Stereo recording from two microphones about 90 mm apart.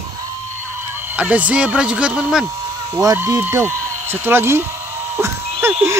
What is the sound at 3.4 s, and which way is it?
Speech, 25° right (ahead or behind).